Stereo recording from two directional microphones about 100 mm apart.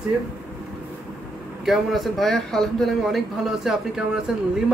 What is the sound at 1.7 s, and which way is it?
A man's voice, centre (ahead or behind).